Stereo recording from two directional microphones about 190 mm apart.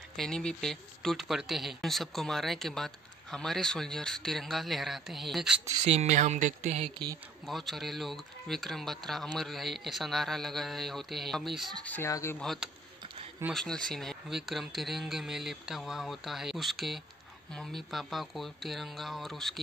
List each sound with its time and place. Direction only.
0.1 s speech: centre (ahead or behind)
5.9 s speech: 40° right (ahead or behind)
7.4 s speech: centre (ahead or behind)
12.4 s speech: centre (ahead or behind)
13.0 s a sound: 25° right (ahead or behind)
13.5 s speech: centre (ahead or behind)